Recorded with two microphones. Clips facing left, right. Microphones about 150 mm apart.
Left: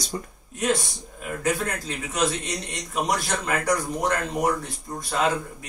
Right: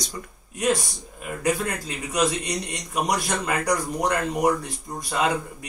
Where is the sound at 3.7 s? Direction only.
15° right (ahead or behind).